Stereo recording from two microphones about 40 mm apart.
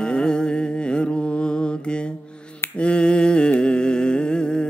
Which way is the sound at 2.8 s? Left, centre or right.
Left.